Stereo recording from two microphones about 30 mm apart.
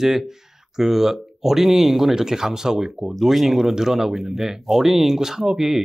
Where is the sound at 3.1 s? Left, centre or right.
Centre.